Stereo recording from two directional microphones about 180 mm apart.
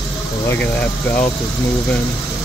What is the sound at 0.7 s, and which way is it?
Speech, 10° left (ahead or behind).